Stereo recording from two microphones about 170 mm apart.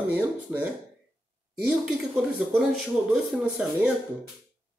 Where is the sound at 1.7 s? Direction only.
5° right (ahead or behind).